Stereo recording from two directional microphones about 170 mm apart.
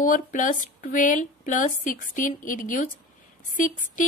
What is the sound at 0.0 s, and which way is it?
A woman's voice, 50° left (ahead or behind).